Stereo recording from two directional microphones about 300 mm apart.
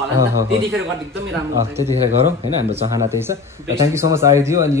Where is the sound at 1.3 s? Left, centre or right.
Centre.